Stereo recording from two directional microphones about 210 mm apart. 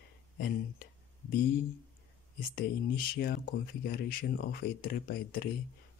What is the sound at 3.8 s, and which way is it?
Speech, 45° left (ahead or behind).